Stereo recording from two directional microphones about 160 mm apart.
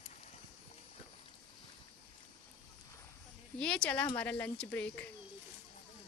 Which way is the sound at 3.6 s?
5° left (ahead or behind).